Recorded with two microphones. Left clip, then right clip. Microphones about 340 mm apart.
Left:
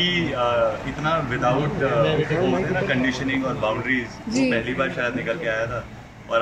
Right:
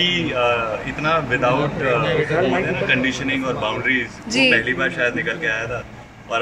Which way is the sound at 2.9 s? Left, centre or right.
Centre.